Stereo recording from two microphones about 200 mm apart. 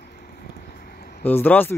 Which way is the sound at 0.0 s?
50° left (ahead or behind).